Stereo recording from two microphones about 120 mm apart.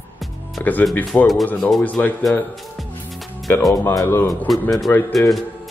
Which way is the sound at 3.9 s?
25° left (ahead or behind).